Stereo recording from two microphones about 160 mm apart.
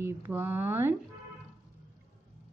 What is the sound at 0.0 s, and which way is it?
Speech, 15° right (ahead or behind).